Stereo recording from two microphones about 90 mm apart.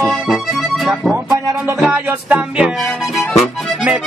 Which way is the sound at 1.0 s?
Centre (ahead or behind).